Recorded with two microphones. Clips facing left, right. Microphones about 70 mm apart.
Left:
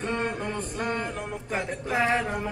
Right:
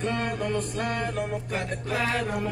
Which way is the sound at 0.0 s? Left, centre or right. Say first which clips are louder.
Right 1 dB; left.